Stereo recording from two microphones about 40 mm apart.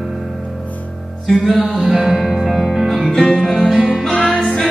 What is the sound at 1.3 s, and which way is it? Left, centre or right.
Music, centre.